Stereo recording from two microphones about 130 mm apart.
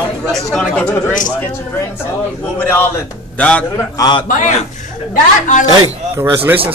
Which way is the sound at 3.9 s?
35° left (ahead or behind).